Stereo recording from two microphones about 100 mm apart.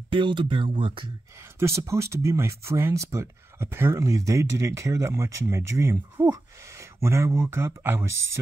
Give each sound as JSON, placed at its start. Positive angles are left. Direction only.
{"t": 0.1, "sound": "speech", "side_deg": -55}
{"t": 1.6, "sound": "speech", "side_deg": -30}